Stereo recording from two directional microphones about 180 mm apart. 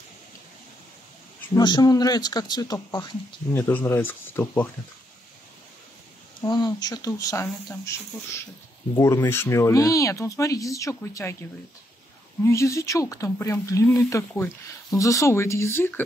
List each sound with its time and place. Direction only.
1.5 s speech: 25° left (ahead or behind)
6.4 s speech: 20° left (ahead or behind)
8.9 s speech: 15° left (ahead or behind)
12.4 s speech: 15° left (ahead or behind)